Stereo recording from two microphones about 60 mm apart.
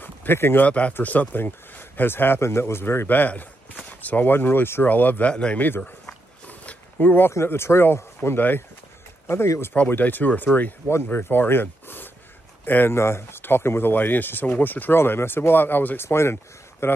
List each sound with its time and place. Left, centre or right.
0.0 s a sound: left
0.7 s speech: left
3.1 s speech: left
5.3 s speech: centre
5.8 s a sound: centre
7.4 s speech: left
9.8 s speech: left
12.9 s speech: left
16.1 s speech: left